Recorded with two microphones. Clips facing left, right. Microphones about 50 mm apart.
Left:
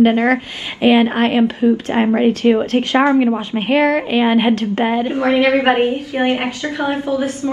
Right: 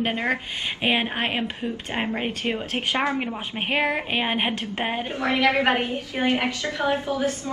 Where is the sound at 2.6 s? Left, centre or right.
Centre.